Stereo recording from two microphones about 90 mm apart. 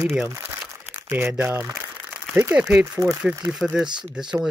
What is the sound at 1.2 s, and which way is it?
Speech, 10° right (ahead or behind).